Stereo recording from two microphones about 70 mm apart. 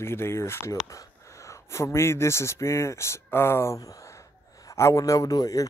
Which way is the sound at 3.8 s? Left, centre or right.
Left.